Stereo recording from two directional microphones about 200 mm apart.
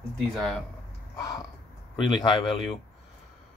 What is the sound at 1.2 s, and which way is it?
Crow, 20° left (ahead or behind).